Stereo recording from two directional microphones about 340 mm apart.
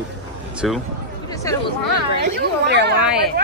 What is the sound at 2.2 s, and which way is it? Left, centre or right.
Speech, right.